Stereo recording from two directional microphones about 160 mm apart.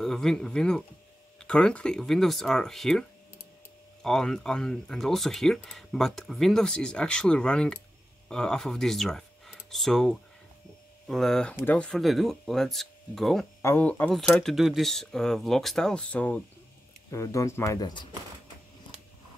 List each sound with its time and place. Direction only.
0.0 s speech: 5° left (ahead or behind)
13.6 s speech: 15° left (ahead or behind)